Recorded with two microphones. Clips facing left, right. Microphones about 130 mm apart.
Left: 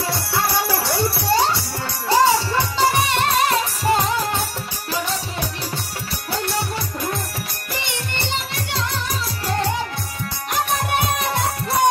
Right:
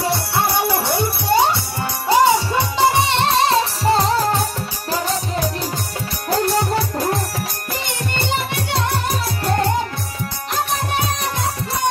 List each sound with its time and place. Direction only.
0.0 s music: 25° right (ahead or behind); by 7.2 s 40° right (ahead or behind)
8.5 s music: 60° right (ahead or behind)